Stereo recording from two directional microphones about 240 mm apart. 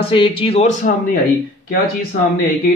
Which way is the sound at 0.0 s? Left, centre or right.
Left.